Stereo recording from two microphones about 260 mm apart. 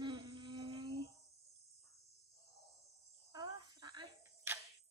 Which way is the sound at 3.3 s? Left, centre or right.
Centre.